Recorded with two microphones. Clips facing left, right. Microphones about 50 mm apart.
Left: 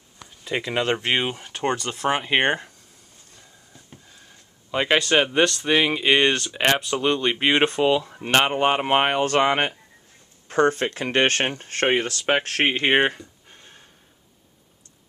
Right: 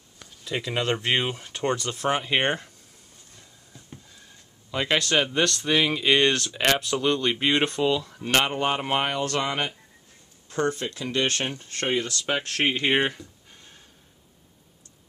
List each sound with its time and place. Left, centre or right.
0.4 s speech: left
4.6 s a man's voice: left
13.5 s a sound: left